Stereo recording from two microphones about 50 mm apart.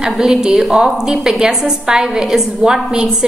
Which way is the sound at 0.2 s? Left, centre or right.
Centre.